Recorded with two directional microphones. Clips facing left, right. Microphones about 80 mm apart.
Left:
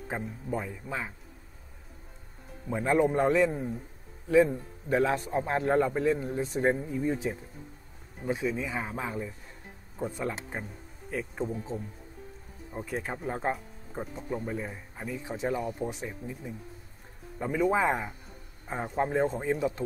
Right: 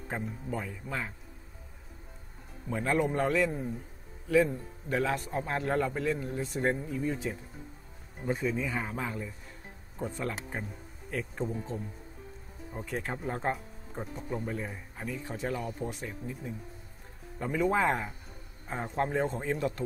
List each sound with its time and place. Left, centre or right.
0.1 s speech: centre
2.7 s a man's voice: centre
6.6 s speech: centre
6.9 s a man's voice: left
8.3 s a man's voice: centre
17.4 s a man's voice: centre